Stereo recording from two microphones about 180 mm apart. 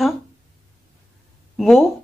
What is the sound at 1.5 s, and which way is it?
Speech, centre (ahead or behind).